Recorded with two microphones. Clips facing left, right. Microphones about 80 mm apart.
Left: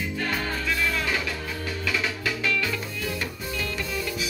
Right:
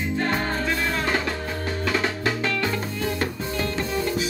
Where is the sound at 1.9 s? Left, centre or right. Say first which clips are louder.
Right 4 dB; right.